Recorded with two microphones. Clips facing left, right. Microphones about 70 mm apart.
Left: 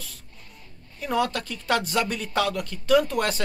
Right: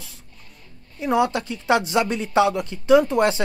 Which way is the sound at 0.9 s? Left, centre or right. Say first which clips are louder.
Right 5 dB; centre.